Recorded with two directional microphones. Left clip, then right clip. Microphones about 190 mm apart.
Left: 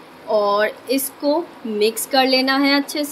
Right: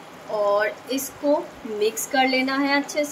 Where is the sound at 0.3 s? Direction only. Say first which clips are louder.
Left 4 dB; 55° left (ahead or behind).